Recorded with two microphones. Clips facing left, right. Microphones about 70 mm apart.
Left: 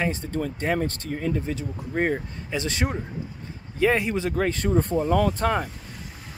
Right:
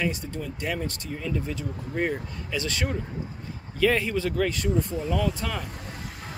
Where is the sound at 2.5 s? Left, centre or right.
Left.